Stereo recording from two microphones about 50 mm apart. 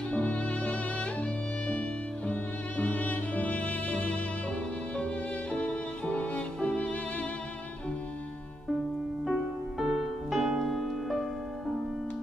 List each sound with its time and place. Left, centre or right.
0.1 s violin: left
1.7 s music: left
4.9 s violin: left
9.2 s music: centre